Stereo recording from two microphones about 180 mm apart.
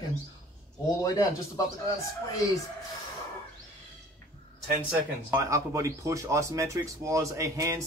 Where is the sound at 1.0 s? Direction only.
20° left (ahead or behind).